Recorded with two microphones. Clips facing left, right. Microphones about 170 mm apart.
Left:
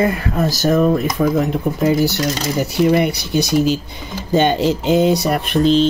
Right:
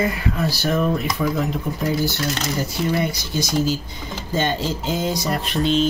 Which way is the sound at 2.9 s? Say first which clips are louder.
Left 7 dB; 70° left (ahead or behind).